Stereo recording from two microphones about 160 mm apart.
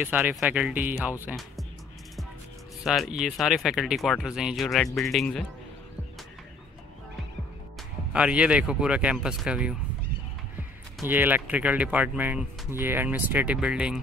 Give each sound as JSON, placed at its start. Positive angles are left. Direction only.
{"t": 0.0, "sound": "speech", "side_deg": -10}
{"t": 2.8, "sound": "speech", "side_deg": -5}
{"t": 8.1, "sound": "speech", "side_deg": -5}
{"t": 11.1, "sound": "speech", "side_deg": -10}